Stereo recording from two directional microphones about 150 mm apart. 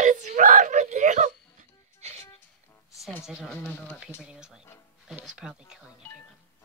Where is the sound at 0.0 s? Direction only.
55° right (ahead or behind).